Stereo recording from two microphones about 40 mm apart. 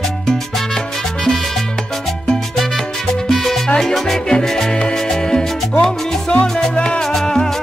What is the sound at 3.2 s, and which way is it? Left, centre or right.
Salsa music, centre.